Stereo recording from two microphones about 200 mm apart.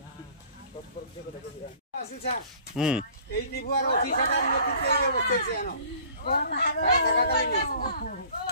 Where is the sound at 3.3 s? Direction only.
50° left (ahead or behind).